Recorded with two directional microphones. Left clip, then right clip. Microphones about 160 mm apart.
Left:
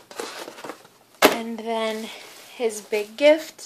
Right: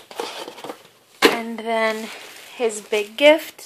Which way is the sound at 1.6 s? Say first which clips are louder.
Right 5 dB; 5° right (ahead or behind).